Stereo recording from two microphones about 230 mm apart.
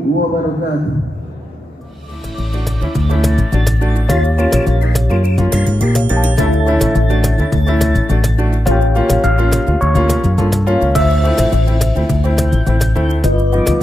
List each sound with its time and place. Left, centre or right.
2.9 s music: centre